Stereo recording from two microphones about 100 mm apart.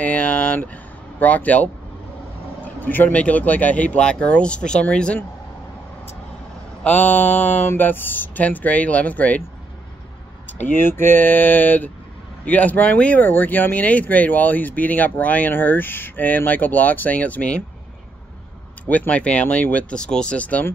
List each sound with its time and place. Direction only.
0.0 s speech: 15° left (ahead or behind)
6.8 s speech: 15° left (ahead or behind)
10.6 s speech: 20° left (ahead or behind)
18.9 s speech: 15° left (ahead or behind)